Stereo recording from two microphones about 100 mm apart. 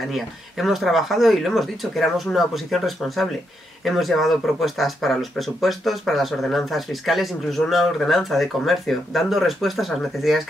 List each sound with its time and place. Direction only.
0.1 s speech: centre (ahead or behind)